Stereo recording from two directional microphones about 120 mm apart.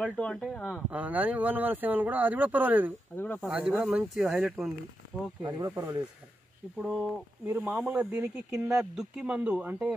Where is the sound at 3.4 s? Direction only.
5° right (ahead or behind).